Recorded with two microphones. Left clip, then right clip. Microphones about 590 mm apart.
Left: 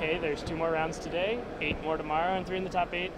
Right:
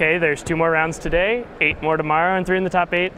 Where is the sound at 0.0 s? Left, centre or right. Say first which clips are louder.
Right 12 dB; right.